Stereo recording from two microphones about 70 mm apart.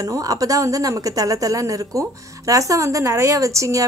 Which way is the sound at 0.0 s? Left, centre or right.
Right.